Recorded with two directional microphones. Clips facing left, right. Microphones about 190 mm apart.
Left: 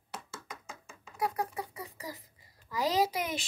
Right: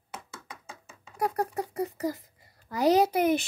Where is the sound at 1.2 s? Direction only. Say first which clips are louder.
Right 5 dB; 40° right (ahead or behind).